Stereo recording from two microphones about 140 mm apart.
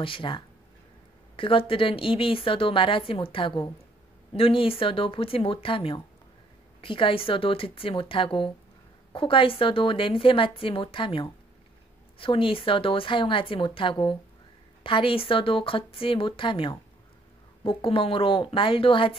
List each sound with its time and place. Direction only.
0.0 s a woman's voice: 40° left (ahead or behind)